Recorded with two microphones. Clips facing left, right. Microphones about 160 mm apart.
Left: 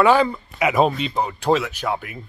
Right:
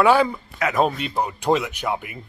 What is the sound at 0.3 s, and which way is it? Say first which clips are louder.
Speech: left 3 dB; 10° left (ahead or behind).